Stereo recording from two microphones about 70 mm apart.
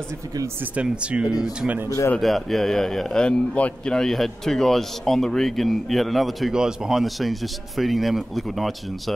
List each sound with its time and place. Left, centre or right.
0.8 s speech: centre
2.1 s a man's voice: centre